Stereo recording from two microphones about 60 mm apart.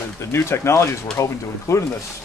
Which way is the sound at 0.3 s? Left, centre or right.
Left.